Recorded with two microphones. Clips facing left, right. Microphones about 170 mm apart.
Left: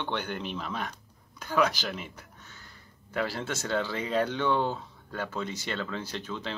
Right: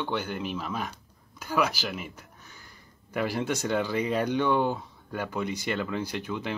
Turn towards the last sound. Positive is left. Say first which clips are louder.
# right 3 dB
turn(degrees=-15)  # may be behind; listen again after turning